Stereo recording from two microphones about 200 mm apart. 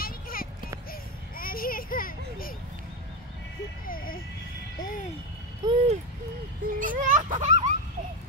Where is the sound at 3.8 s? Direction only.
45° left (ahead or behind).